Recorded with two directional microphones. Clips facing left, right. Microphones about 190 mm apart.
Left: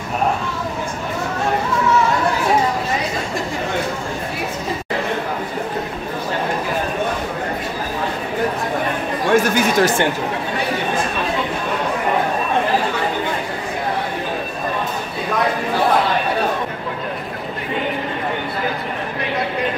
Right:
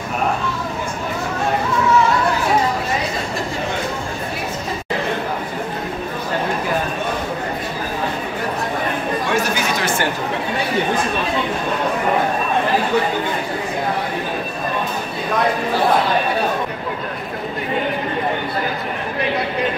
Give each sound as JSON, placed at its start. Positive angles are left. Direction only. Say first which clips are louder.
{"t": 9.3, "sound": "chatter", "louder": "left 8 dB", "side_deg": 50}